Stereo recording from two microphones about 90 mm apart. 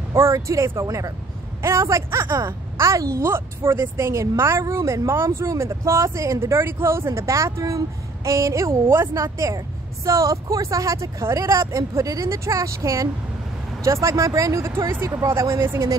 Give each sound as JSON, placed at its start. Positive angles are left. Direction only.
{"t": 0.1, "sound": "a woman's voice", "side_deg": -30}